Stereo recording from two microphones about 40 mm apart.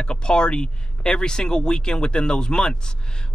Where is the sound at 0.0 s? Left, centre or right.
Left.